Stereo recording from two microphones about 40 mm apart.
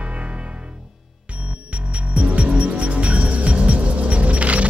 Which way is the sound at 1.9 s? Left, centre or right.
Right.